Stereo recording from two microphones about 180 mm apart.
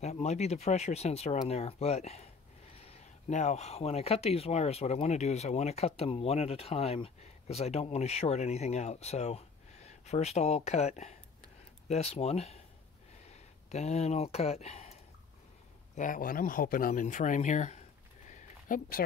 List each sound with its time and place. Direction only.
0.0 s speech: 35° left (ahead or behind)
3.3 s speech: 40° left (ahead or behind)
13.7 s speech: 40° left (ahead or behind)
15.9 s speech: 45° left (ahead or behind)
18.3 s a sound: 50° left (ahead or behind)